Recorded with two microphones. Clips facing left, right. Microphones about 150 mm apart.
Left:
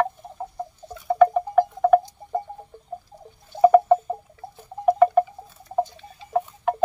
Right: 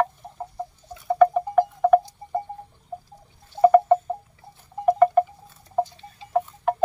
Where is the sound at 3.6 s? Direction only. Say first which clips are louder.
Left 1 dB; 5° left (ahead or behind).